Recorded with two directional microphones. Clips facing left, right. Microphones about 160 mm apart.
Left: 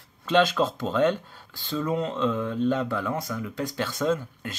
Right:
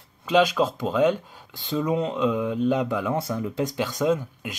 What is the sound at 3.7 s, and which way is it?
Speech, 15° right (ahead or behind).